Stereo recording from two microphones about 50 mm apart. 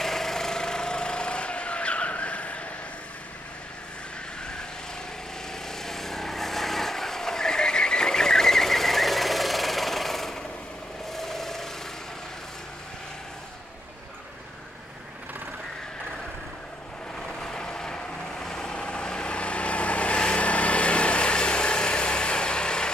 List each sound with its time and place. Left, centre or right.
0.0 s vehicle: centre; by 2.6 s left
5.7 s vehicle: centre
11.1 s a sound: centre
17.3 s vehicle: centre